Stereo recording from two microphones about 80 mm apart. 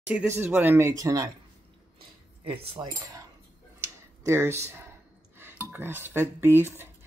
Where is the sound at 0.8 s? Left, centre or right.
Right.